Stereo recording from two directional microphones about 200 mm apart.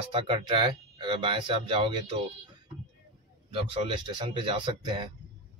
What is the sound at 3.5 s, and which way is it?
Speech, 25° right (ahead or behind).